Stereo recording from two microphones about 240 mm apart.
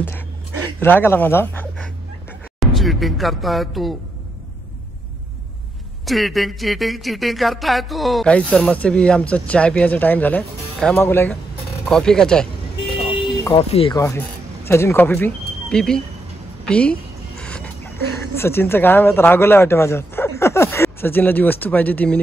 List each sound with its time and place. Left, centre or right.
0.7 s speech: centre
6.0 s a sound: centre
13.6 s a woman's voice: left; by 22.2 s centre